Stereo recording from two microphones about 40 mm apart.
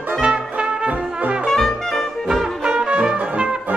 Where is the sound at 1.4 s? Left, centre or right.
Centre.